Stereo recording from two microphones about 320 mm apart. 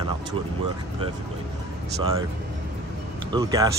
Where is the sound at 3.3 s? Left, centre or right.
Centre.